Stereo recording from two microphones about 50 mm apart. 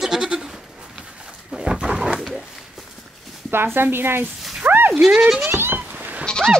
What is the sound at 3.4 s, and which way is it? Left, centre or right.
Speech, right.